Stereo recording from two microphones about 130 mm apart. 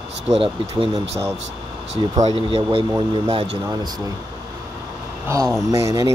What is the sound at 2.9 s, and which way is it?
Speech, 35° right (ahead or behind).